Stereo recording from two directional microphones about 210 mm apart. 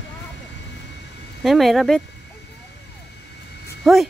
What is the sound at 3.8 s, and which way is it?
Speech, centre (ahead or behind).